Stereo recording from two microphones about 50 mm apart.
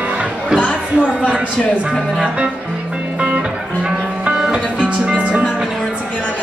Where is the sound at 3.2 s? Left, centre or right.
Right.